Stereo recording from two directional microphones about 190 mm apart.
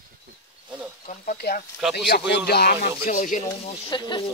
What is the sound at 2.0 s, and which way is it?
Speech, 60° left (ahead or behind).